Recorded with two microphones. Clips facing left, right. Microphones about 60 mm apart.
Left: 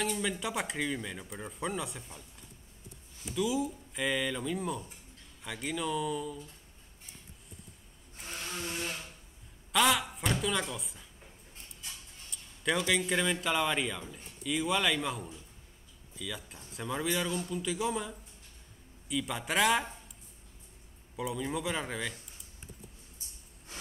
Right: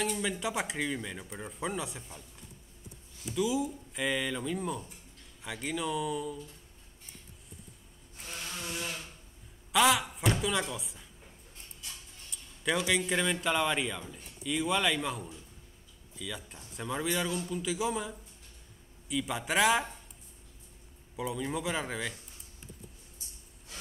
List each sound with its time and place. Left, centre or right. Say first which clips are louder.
0.0 s speech: right 1 dB; centre
3.3 s speech: right 1 dB; centre
8.2 s a sound: left 1 dB; left
9.7 s a woman's voice: right 2 dB; centre
12.3 s speech: even; centre
21.2 s speech: even; centre